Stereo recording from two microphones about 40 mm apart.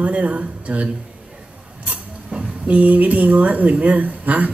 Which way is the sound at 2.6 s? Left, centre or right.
Right.